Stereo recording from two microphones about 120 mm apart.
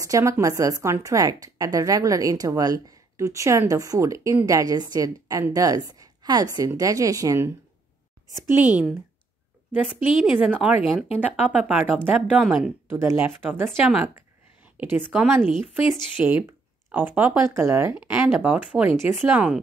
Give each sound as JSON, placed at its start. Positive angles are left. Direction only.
{"t": 0.0, "sound": "a woman's voice", "side_deg": -25}
{"t": 10.2, "sound": "a woman's voice", "side_deg": -10}
{"t": 17.6, "sound": "speech", "side_deg": -25}
{"t": 17.9, "sound": "a woman's voice", "side_deg": -10}